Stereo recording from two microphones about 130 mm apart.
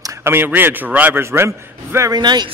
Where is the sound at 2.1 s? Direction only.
35° right (ahead or behind).